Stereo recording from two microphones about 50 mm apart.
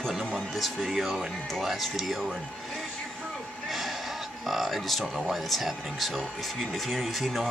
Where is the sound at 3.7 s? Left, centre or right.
Centre.